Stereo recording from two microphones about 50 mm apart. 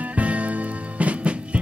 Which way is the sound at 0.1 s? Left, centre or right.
Right.